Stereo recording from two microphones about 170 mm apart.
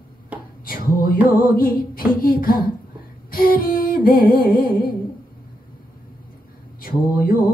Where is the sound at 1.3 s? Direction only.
55° left (ahead or behind).